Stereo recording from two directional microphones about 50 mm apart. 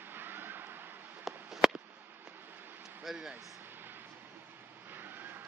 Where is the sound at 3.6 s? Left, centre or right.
Right.